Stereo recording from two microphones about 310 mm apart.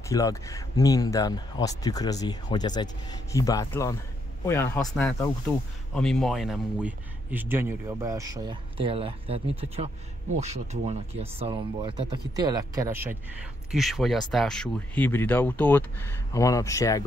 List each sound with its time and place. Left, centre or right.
0.1 s speech: centre